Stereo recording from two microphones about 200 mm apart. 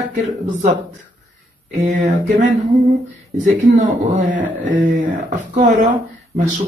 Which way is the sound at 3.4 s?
40° right (ahead or behind).